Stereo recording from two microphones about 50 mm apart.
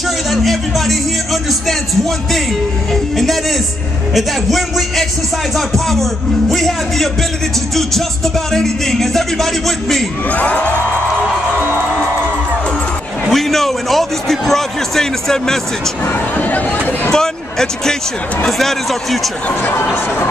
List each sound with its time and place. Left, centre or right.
0.3 s speech: centre
7.7 s music: centre
10.3 s music: left
13.3 s a sound: centre
16.1 s speech: left
17.1 s speech: centre